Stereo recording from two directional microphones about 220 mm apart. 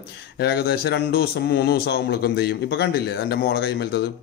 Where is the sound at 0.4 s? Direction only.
45° left (ahead or behind).